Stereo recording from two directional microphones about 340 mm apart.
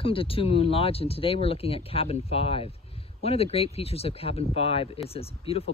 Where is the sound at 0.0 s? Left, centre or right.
Centre.